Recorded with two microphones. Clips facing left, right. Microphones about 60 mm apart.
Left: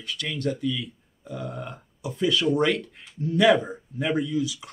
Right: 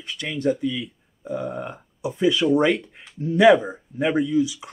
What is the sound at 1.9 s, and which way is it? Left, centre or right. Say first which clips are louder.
Speech: right 4 dB; centre.